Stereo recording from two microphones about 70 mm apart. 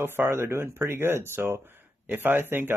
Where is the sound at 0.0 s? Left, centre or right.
Right.